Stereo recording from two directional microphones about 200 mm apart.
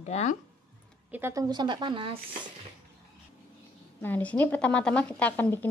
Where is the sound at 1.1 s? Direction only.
10° right (ahead or behind).